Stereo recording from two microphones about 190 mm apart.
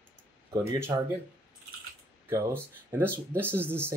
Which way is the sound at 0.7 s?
15° right (ahead or behind).